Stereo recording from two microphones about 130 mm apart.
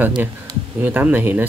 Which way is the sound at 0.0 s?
15° right (ahead or behind).